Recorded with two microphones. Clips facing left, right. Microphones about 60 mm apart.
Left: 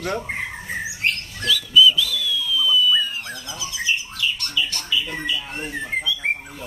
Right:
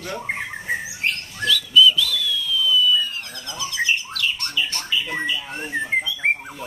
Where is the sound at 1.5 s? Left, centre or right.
Centre.